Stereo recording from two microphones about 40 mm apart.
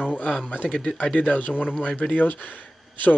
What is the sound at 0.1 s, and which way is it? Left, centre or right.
Speech, left.